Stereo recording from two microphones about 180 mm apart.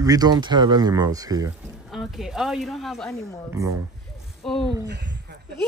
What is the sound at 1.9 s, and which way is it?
Speech, centre (ahead or behind).